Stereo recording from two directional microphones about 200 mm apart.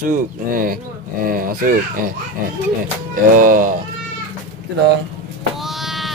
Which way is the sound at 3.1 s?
45° right (ahead or behind).